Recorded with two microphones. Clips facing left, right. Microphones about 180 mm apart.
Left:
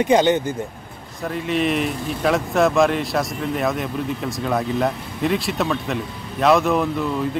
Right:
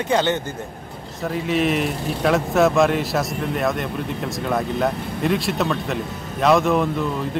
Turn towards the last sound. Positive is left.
turn(degrees=0)  # may be behind; listen again after turning